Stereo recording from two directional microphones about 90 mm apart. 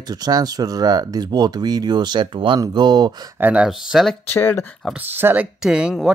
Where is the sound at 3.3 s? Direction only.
20° right (ahead or behind).